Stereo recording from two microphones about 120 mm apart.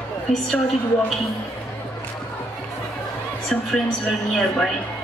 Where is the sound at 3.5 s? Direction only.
Centre (ahead or behind).